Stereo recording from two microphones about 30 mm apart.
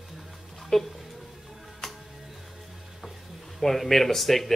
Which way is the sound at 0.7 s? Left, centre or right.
Centre.